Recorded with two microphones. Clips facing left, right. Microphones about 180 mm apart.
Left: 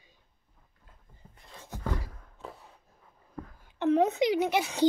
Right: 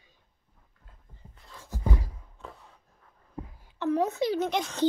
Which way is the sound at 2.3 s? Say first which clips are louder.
Left 2 dB; 5° left (ahead or behind).